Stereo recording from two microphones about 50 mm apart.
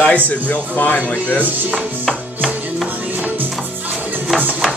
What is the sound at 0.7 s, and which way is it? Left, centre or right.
Speech, left.